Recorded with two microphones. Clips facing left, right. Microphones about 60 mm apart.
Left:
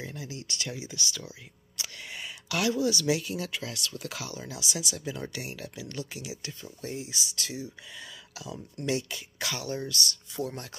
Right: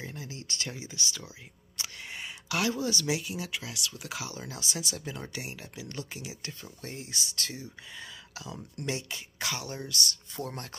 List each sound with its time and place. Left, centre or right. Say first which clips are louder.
0.0 s speech: left 2 dB; right
1.8 s a sound: even; right
3.1 s speech: left 3 dB; centre; by 6.3 s right
6.4 s speech: left 3 dB; right
7.9 s speech: even; right
10.3 s speech: left 3 dB; right